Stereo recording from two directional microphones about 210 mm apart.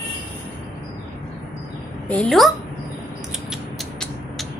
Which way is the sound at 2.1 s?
5° left (ahead or behind).